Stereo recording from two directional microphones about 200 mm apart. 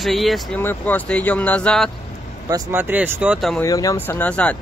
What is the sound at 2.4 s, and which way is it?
Speech, 15° right (ahead or behind).